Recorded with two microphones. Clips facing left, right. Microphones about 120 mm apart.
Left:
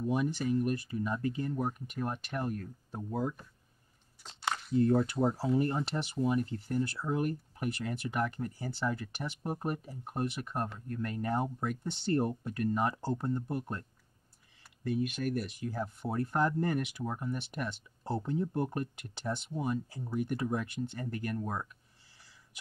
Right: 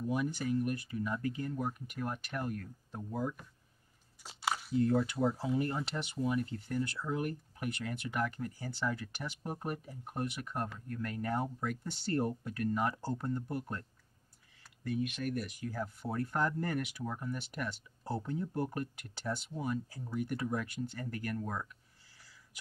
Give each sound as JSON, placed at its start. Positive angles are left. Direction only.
{"t": 0.0, "sound": "speech", "side_deg": 25}
{"t": 4.2, "sound": "a sound", "side_deg": -5}
{"t": 4.7, "sound": "speech", "side_deg": 30}
{"t": 14.8, "sound": "speech", "side_deg": 35}